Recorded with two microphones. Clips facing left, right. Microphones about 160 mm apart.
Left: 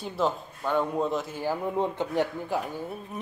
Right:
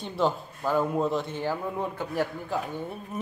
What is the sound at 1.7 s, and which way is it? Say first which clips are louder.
Speech: left 3 dB; 20° left (ahead or behind).